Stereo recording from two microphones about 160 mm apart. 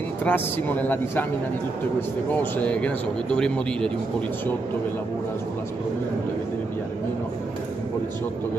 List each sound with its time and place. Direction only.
0.2 s speech: 10° left (ahead or behind)
2.3 s speech: 10° left (ahead or behind)